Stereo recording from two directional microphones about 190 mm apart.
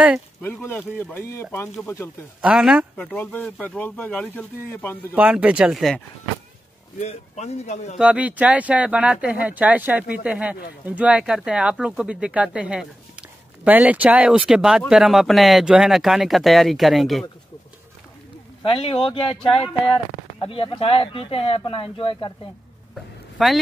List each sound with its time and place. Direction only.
0.4 s speech: 10° left (ahead or behind)
2.4 s speech: 5° right (ahead or behind)
5.1 s speech: 10° right (ahead or behind)
7.0 s a man's voice: 35° left (ahead or behind)
8.0 s speech: 5° right (ahead or behind)
18.6 s speech: 30° left (ahead or behind)
20.3 s speech: 30° left (ahead or behind)
23.3 s speech: centre (ahead or behind)